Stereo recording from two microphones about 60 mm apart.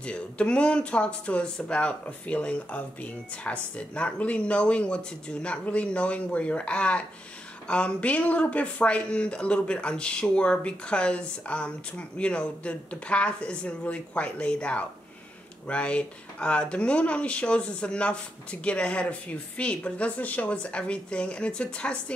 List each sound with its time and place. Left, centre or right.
0.0 s speech: centre